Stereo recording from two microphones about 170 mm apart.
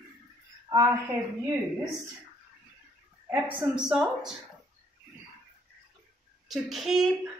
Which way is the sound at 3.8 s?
5° right (ahead or behind).